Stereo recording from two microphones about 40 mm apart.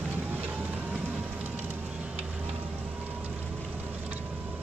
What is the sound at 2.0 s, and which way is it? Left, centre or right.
Music, right.